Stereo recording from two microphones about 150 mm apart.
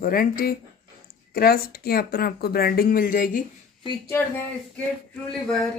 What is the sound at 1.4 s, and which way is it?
Speech, 90° left.